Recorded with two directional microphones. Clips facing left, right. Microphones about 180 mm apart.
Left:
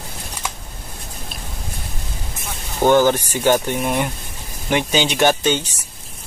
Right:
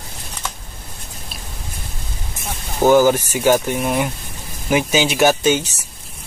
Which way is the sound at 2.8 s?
5° right (ahead or behind).